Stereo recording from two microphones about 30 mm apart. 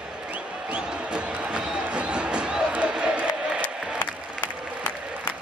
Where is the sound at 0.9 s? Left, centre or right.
Right.